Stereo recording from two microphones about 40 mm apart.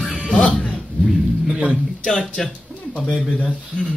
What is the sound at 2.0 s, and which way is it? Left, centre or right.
Speech, centre.